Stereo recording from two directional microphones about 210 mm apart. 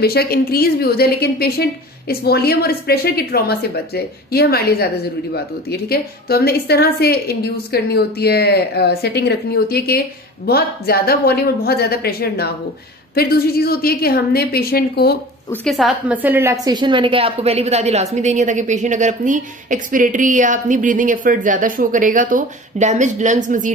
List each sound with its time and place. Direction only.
0.0 s a woman's voice: 50° left (ahead or behind)
15.5 s a woman's voice: centre (ahead or behind); by 23.7 s 35° right (ahead or behind)